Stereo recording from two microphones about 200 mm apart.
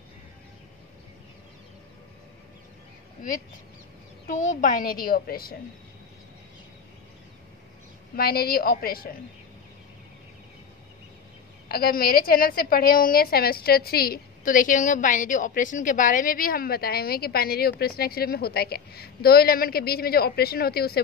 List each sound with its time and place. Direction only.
4.4 s a woman's voice: 40° left (ahead or behind)
8.2 s a woman's voice: 50° left (ahead or behind)
11.7 s a woman's voice: 50° left (ahead or behind)